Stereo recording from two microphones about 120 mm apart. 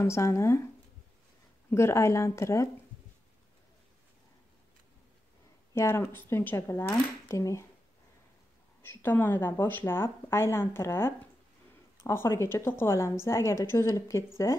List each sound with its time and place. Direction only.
0.0 s a woman's voice: 25° left (ahead or behind)
1.7 s a woman's voice: 20° left (ahead or behind)
5.8 s a woman's voice: 20° left (ahead or behind)
8.8 s a woman's voice: 15° left (ahead or behind)